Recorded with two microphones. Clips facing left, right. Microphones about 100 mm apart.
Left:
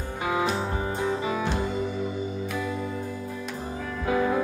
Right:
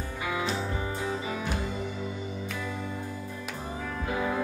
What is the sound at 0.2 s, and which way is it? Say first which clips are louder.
Music: left 5 dB; 40° left (ahead or behind).